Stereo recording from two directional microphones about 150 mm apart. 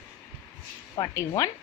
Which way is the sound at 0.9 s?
25° left (ahead or behind).